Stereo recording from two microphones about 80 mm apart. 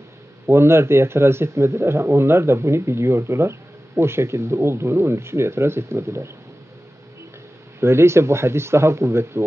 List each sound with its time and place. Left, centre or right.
0.5 s speech: right
7.8 s speech: right